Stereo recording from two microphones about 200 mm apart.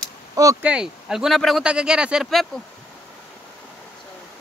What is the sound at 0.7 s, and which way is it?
Speech, 5° right (ahead or behind).